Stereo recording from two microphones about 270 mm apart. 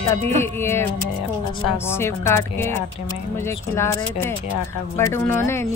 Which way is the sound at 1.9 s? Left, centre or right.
Centre.